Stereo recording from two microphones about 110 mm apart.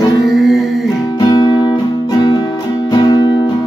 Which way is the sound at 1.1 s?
40° left (ahead or behind).